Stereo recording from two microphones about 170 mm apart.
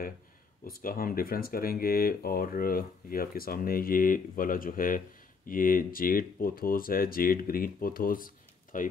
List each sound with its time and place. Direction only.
0.7 s speech: 60° left (ahead or behind)